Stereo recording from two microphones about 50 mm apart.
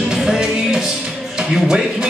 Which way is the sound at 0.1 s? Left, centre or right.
Centre.